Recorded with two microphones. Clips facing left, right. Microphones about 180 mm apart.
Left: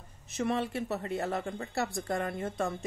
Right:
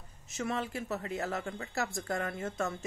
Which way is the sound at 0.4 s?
35° left (ahead or behind).